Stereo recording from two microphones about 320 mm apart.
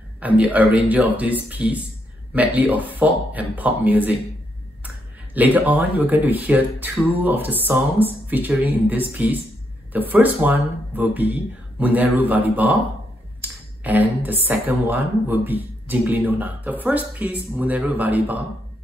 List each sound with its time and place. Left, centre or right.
0.2 s speech: centre